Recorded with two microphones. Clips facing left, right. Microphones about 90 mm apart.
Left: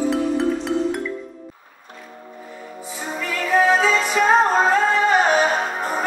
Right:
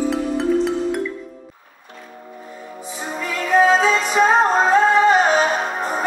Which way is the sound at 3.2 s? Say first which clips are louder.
Right 2 dB; 20° right (ahead or behind).